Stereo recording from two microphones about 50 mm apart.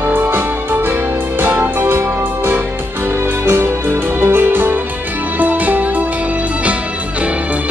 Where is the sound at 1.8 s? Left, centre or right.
Right.